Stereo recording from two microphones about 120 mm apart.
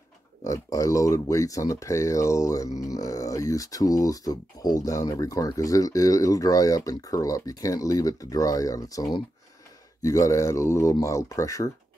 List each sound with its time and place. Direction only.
0.4 s speech: 25° left (ahead or behind)
10.0 s speech: 25° left (ahead or behind)